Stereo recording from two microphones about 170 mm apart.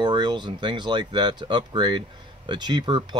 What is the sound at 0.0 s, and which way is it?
Speech, 25° right (ahead or behind).